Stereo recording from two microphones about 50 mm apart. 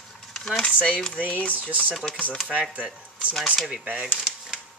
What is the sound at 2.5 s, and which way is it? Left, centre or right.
Speech, right.